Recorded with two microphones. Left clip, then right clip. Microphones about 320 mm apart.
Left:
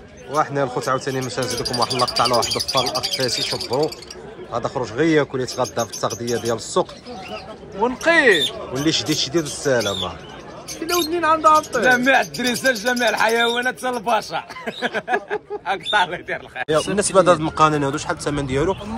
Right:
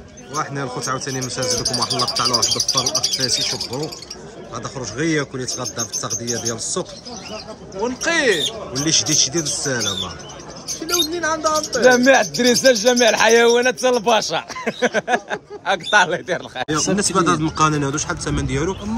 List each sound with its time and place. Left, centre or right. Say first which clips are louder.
0.3 s a man's voice: left 5 dB; centre
7.8 s speech: left 3 dB; centre
8.8 s speech: right 3 dB; centre
11.4 s speech: left 6 dB; left
11.9 s speech: right 1 dB; right
16.9 s speech: left 4 dB; centre